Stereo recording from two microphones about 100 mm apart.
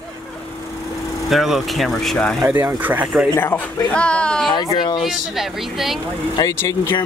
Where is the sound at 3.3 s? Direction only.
25° left (ahead or behind).